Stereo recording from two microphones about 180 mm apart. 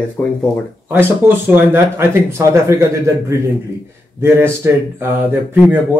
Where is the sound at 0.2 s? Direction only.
5° left (ahead or behind).